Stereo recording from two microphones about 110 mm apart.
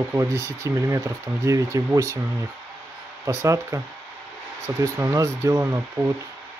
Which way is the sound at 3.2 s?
25° right (ahead or behind).